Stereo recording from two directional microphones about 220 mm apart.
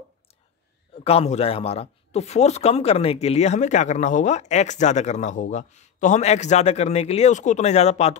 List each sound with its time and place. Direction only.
0.9 s speech: 25° left (ahead or behind)